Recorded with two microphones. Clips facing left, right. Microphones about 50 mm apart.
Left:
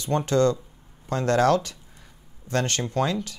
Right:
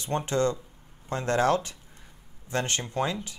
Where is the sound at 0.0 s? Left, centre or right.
Right.